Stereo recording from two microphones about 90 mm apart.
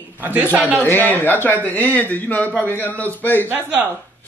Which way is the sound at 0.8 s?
20° left (ahead or behind).